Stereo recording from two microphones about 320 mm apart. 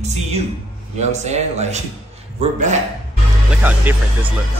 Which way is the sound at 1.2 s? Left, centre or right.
Right.